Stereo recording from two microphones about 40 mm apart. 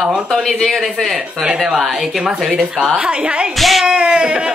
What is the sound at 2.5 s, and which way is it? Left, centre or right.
Speech, right.